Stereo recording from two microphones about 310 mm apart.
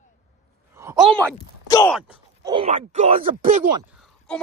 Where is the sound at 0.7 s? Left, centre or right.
Centre.